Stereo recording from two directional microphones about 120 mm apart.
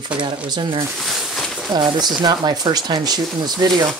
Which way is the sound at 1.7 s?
35° right (ahead or behind).